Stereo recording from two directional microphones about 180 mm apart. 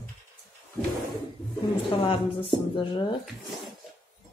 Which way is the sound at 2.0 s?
30° left (ahead or behind).